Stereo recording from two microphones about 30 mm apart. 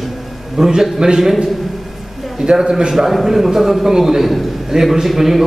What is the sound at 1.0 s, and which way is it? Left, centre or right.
Speech, right.